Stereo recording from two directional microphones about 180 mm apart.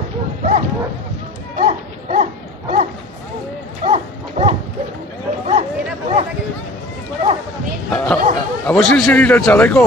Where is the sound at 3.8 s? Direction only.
35° right (ahead or behind).